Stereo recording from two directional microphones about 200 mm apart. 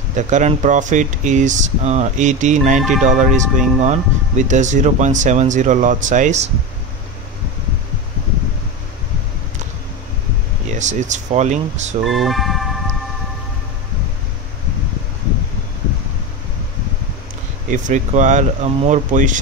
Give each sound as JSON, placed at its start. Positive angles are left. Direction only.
{"t": 0.1, "sound": "speech", "side_deg": -35}
{"t": 10.7, "sound": "speech", "side_deg": -35}
{"t": 12.1, "sound": "music", "side_deg": 0}
{"t": 17.6, "sound": "speech", "side_deg": -40}